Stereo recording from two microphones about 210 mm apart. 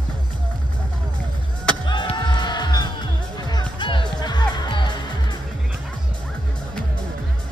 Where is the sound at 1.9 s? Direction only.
20° left (ahead or behind).